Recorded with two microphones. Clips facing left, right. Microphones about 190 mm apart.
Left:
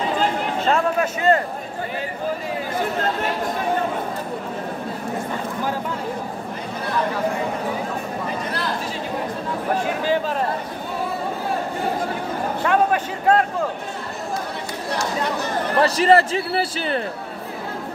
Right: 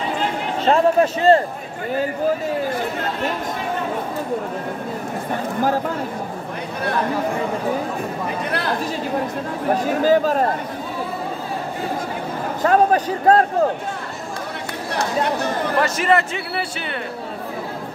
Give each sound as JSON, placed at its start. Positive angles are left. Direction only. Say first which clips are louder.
{"t": 0.7, "sound": "a man's voice", "louder": "right 6 dB", "side_deg": -30}
{"t": 8.5, "sound": "speech", "louder": "right 3 dB", "side_deg": -60}
{"t": 10.0, "sound": "speech", "louder": "right 7 dB", "side_deg": -40}
{"t": 12.6, "sound": "a man's voice", "louder": "right 4 dB", "side_deg": -40}
{"t": 15.8, "sound": "speech", "louder": "left 4 dB", "side_deg": 35}